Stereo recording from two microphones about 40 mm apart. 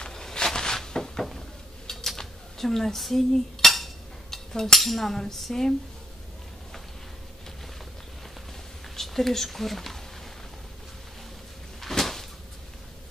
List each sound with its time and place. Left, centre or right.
0.0 s a sound: centre
1.9 s cutlery: centre
4.5 s speech: centre
4.7 s cutlery: centre
8.9 s speech: centre
11.8 s cupboard open or close: centre